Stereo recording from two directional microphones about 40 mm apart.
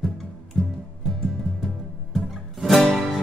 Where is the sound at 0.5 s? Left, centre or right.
Centre.